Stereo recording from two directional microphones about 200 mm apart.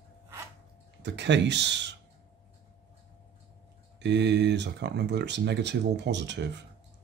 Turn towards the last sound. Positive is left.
turn(degrees=-60)  # may be behind; listen again after turning